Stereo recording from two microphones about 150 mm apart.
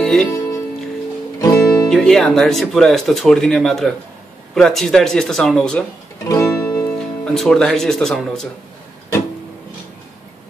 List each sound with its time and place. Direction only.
0.0 s music: 5° left (ahead or behind)
1.4 s music: 20° left (ahead or behind)
1.9 s speech: 5° left (ahead or behind)
6.2 s music: 20° left (ahead or behind)
7.0 s speech: 5° left (ahead or behind)